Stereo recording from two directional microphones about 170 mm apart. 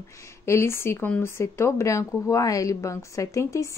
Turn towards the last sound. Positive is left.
turn(degrees=15)  # may be behind; listen again after turning